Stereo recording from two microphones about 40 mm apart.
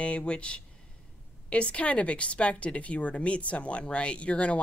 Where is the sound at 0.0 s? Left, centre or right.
Left.